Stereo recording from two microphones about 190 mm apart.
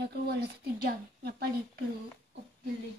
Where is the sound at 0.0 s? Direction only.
60° right (ahead or behind).